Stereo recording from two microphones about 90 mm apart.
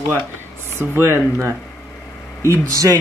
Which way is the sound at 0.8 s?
25° right (ahead or behind).